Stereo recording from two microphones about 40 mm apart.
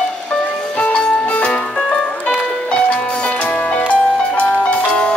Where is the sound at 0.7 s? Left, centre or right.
Left.